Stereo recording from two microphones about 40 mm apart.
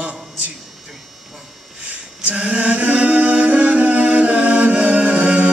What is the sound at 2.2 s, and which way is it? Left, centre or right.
Chant, right.